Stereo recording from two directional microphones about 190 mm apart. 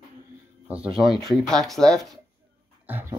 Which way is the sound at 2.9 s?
10° right (ahead or behind).